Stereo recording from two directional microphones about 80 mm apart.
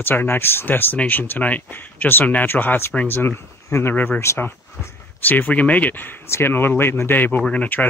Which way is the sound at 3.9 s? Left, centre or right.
Left.